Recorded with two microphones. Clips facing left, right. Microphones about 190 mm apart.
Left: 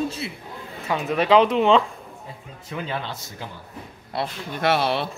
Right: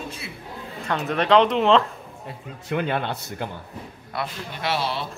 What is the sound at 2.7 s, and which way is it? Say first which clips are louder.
Speech: right 5 dB; 60° right (ahead or behind).